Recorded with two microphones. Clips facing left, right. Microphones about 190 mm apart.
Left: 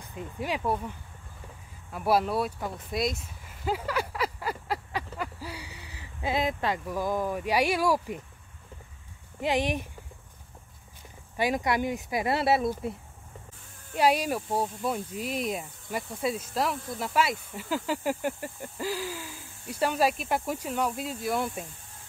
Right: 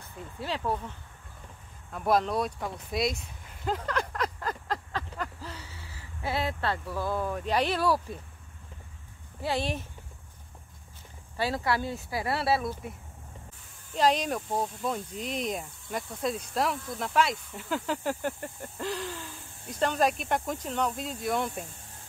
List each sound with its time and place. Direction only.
0.0 s speech: 15° left (ahead or behind)
9.4 s speech: 15° left (ahead or behind)
11.3 s speech: 15° left (ahead or behind)
13.9 s speech: 10° left (ahead or behind)